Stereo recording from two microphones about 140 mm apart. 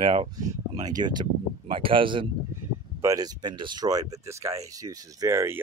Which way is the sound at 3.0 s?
25° right (ahead or behind).